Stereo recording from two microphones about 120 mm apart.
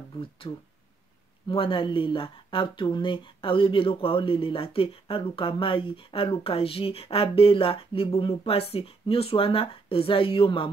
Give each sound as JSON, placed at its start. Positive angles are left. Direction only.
{"t": 0.4, "sound": "speech", "side_deg": 50}